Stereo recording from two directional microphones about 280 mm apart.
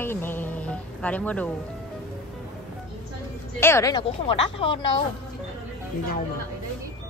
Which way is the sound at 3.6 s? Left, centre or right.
Centre.